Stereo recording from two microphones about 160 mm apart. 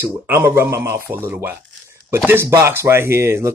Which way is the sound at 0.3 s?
15° right (ahead or behind).